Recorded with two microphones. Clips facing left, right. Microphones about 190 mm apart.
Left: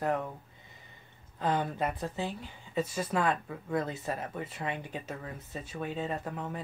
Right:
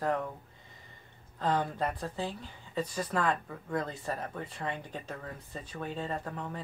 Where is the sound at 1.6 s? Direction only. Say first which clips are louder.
Left 1 dB; 5° left (ahead or behind).